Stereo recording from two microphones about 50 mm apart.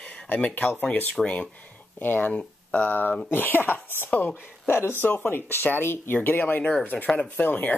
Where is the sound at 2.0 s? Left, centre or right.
Left.